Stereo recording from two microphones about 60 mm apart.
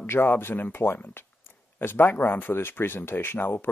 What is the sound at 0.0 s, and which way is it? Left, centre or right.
Speech, left.